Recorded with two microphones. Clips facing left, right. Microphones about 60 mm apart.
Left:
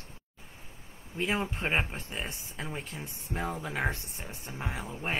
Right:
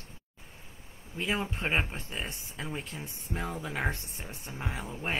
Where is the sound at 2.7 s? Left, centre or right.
Left.